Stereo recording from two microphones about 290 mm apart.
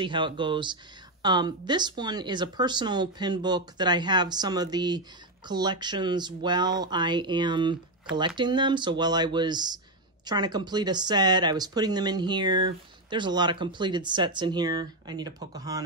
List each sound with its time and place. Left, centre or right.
0.0 s speech: centre